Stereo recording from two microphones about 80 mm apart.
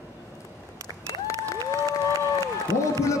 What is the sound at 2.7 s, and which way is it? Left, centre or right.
Run, left.